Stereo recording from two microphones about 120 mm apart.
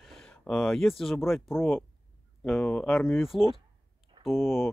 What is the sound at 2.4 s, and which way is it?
Speech, 5° left (ahead or behind).